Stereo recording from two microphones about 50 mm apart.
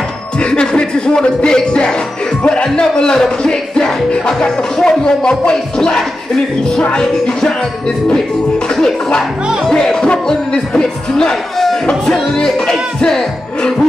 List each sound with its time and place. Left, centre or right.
0.4 s speech: centre
8.7 s speech: centre